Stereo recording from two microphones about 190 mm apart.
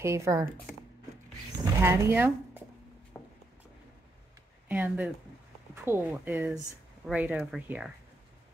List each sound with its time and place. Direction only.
0.0 s speech: 15° right (ahead or behind)
1.6 s speech: 15° right (ahead or behind)
3.1 s a sound: 10° left (ahead or behind)
4.6 s speech: 10° right (ahead or behind)